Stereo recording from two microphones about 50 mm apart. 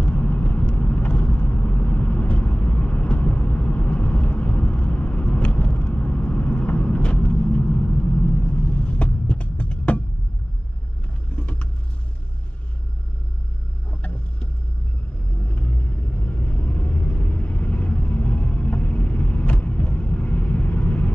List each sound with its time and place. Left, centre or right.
0.0 s vehicle: left
11.3 s vehicle: left
13.8 s boat: left
15.4 s vehicle: left